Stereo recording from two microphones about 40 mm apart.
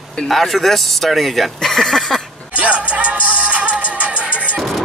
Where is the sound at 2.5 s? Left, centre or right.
Right.